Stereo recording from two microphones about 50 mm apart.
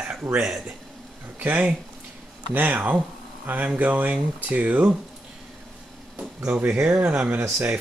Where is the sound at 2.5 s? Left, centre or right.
Right.